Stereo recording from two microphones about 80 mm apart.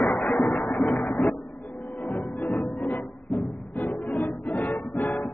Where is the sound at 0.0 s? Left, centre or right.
Centre.